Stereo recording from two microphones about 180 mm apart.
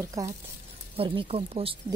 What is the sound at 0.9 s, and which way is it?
Speech, 30° right (ahead or behind).